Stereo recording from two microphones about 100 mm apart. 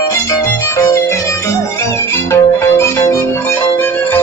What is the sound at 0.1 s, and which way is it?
Violin, 30° left (ahead or behind).